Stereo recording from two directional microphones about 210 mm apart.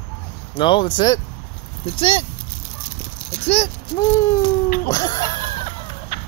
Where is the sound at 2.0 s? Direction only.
25° left (ahead or behind).